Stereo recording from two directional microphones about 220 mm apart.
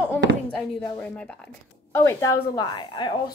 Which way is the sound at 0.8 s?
10° left (ahead or behind).